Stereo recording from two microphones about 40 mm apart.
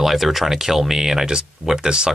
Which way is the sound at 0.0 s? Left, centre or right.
Centre.